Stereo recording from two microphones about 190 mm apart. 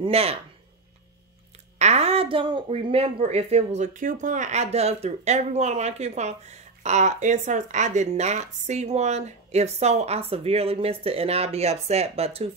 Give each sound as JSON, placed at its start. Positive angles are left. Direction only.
{"t": 0.0, "sound": "speech", "side_deg": -30}
{"t": 1.8, "sound": "speech", "side_deg": -35}